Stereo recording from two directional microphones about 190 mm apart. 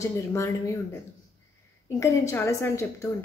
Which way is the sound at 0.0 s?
15° left (ahead or behind).